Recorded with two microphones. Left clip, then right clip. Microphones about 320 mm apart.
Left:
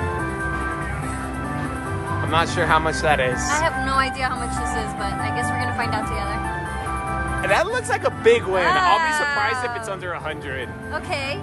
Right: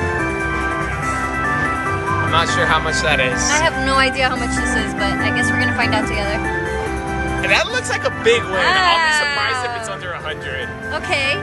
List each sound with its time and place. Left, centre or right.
2.3 s music: left
3.4 s speech: centre
7.4 s speech: left
8.6 s speech: centre
11.1 s speech: centre